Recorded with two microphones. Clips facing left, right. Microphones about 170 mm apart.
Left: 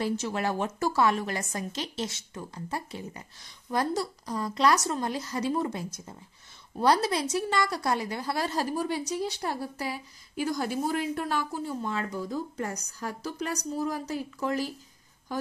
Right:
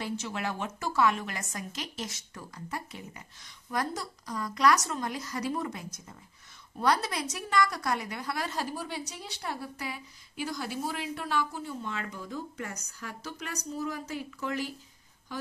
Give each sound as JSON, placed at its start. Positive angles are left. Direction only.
{"t": 0.0, "sound": "a woman's voice", "side_deg": 40}